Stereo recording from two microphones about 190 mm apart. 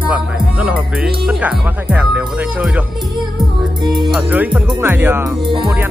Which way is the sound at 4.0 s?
10° right (ahead or behind).